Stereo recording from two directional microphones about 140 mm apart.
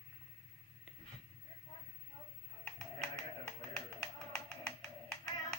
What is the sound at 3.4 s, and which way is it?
Tap, 15° left (ahead or behind).